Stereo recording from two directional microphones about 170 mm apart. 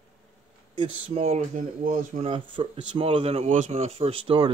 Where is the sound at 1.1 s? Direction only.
40° right (ahead or behind).